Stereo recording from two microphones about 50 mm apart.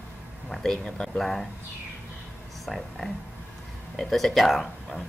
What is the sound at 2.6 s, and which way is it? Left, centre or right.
Speech, centre.